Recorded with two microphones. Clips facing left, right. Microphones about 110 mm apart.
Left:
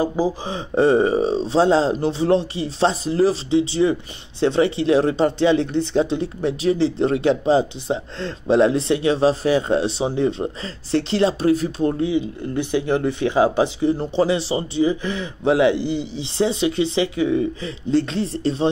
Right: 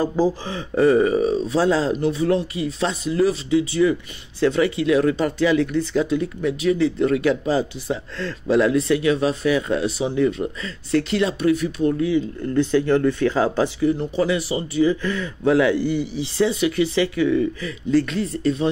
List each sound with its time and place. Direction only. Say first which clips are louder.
0.0 s speech: right 1 dB; 15° left (ahead or behind); by 12.1 s 35° left (ahead or behind)
12.1 s speech: right 1 dB; 15° left (ahead or behind)
13.7 s speech: left 1 dB; 30° left (ahead or behind)